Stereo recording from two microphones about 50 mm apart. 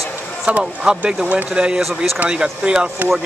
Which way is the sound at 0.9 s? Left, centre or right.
Centre.